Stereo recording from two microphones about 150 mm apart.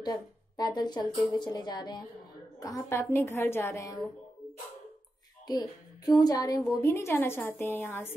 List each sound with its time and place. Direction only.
0.0 s a woman's voice: 25° left (ahead or behind)
5.5 s a woman's voice: 25° left (ahead or behind)